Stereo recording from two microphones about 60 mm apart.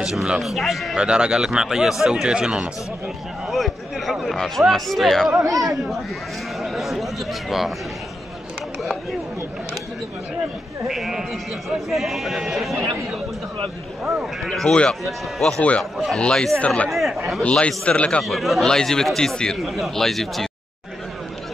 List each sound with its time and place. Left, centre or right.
0.0 s a man's voice: centre
0.9 s speech: centre
3.4 s a man's voice: centre
5.4 s speech: right
6.6 s speech: centre
10.9 s a man's voice: centre
14.0 s a man's voice: centre
14.6 s a man's voice: centre
15.8 s a man's voice: centre
16.2 s a man's voice: centre
16.9 s a man's voice: centre
17.4 s a man's voice: centre
18.2 s a man's voice: centre